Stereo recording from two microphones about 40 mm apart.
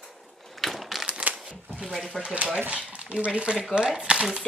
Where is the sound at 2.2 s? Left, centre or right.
Centre.